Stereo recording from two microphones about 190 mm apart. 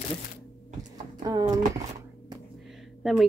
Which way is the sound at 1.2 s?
20° right (ahead or behind).